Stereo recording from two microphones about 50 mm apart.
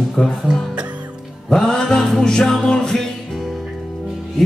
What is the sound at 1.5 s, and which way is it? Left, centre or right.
Music, centre.